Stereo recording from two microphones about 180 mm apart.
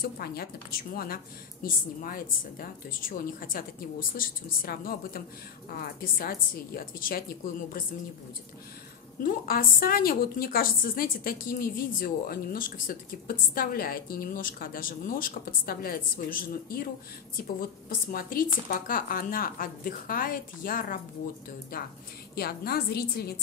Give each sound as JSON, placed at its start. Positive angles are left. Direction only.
{"t": 0.0, "sound": "a woman's voice", "side_deg": 60}
{"t": 9.2, "sound": "a woman's voice", "side_deg": 50}
{"t": 22.3, "sound": "a woman's voice", "side_deg": 60}